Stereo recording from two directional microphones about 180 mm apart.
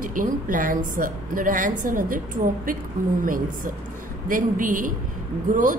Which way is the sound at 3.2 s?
50° right (ahead or behind).